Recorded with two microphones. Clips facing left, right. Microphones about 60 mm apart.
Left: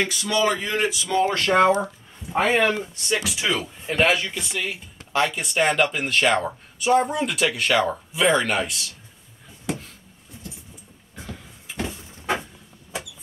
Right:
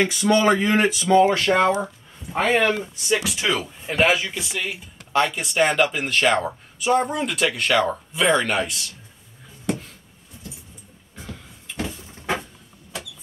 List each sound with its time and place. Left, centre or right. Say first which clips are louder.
0.3 s speech: right 5 dB; right
1.1 s speech: right 6 dB; centre
1.4 s speech: left 1 dB; centre
9.7 s a sound: right 3 dB; centre
11.1 s cupboard open or close: even; centre